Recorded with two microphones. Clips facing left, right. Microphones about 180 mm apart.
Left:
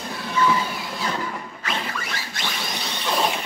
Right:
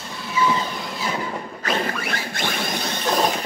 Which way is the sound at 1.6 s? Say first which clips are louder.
Right 6 dB; 50° right (ahead or behind).